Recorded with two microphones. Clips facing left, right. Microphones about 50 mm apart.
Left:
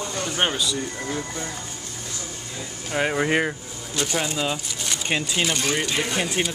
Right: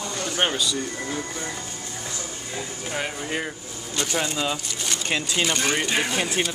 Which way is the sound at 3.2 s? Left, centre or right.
Left.